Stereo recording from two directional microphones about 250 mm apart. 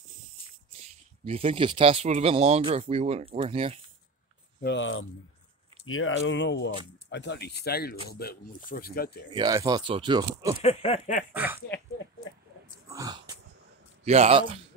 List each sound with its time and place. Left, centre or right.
0.7 s speech: right
4.6 s speech: left
9.3 s speech: centre
10.6 s a sound: left
11.3 s speech: centre
12.8 s dog: centre
14.0 s speech: right